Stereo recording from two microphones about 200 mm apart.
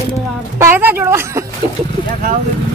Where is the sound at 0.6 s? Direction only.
10° right (ahead or behind).